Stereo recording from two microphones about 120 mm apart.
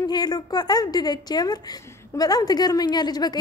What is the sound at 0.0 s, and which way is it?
A woman's voice, 35° left (ahead or behind).